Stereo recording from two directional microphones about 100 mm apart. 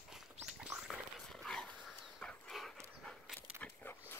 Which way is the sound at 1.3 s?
5° left (ahead or behind).